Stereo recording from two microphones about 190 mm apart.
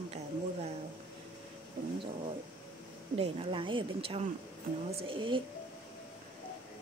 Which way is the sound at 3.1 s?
30° right (ahead or behind).